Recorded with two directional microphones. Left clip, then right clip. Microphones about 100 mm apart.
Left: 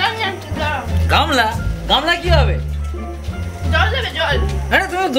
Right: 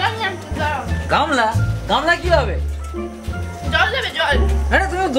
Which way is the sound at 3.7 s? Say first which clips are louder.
Even; 35° right (ahead or behind).